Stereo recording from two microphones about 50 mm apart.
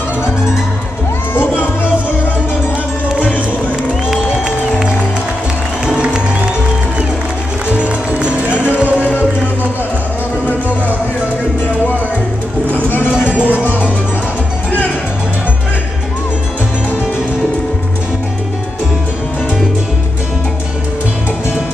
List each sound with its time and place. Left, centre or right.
4.1 s music: centre
5.9 s music: centre
7.7 s music: right
13.1 s music: centre